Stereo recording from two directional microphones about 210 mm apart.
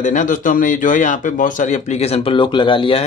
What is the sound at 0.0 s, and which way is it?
A man's voice, 40° left (ahead or behind).